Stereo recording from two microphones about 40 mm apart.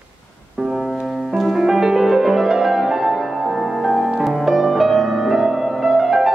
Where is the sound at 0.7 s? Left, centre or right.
Centre.